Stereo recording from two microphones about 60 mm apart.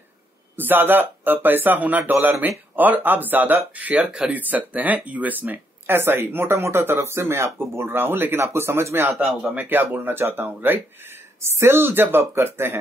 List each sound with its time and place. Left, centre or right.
0.6 s speech: right
4.0 s speech: centre
4.3 s speech: right
9.1 s a man's voice: centre
9.7 s speech: right